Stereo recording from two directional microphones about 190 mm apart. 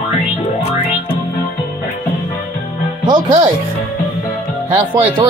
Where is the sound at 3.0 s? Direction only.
20° right (ahead or behind).